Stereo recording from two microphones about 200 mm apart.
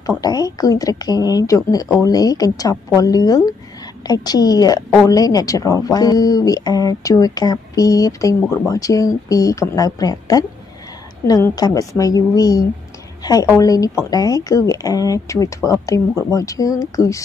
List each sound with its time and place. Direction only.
0.2 s a woman's voice: 20° left (ahead or behind)